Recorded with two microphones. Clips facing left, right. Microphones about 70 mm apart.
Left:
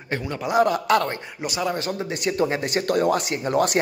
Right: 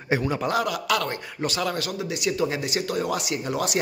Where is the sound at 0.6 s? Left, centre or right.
Left.